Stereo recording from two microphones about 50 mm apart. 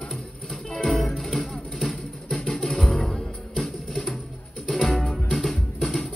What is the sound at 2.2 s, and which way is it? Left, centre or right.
Music, centre.